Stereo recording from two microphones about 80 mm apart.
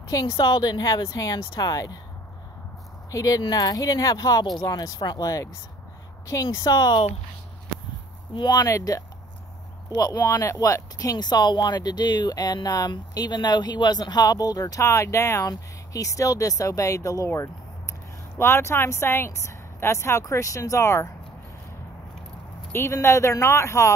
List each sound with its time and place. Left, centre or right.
0.1 s speech: left
3.1 s speech: left
8.5 s speech: left
10.3 s speech: left
12.9 s speech: left
14.8 s speech: left
22.7 s speech: left